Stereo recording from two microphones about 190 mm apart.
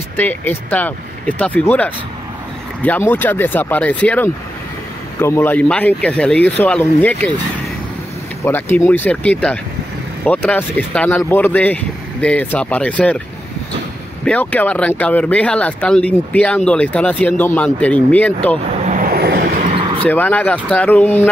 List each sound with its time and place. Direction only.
0.2 s speech: 10° left (ahead or behind)
8.5 s speech: 10° left (ahead or behind)
14.2 s speech: 5° left (ahead or behind)
18.9 s vehicle: 50° right (ahead or behind)
20.0 s speech: 10° left (ahead or behind)